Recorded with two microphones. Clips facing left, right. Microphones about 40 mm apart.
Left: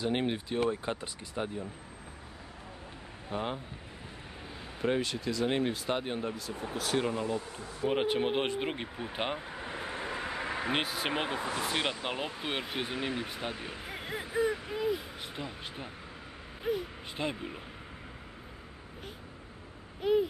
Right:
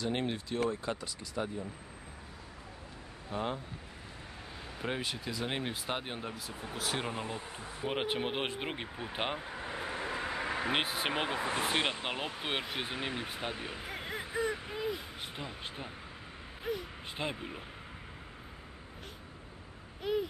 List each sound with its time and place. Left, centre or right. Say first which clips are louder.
0.0 s speech: left 3 dB; centre
3.3 s speech: left 1 dB; centre
4.7 s speech: left 6 dB; centre
7.1 s speech: left 5 dB; right
7.9 s speech: left 5 dB; centre
10.8 s speech: even; centre
11.1 s speech: left 1 dB; centre
11.4 s speech: even; right
12.1 s speech: left 1 dB; centre
20.0 s speech: left 6 dB; centre